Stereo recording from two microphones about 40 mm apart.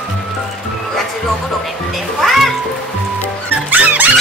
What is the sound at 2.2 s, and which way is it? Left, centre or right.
Music, centre.